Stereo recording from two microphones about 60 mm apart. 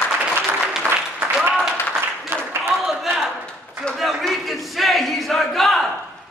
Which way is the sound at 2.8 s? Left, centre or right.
Centre.